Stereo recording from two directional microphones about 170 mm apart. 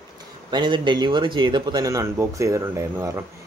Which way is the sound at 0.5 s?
25° right (ahead or behind).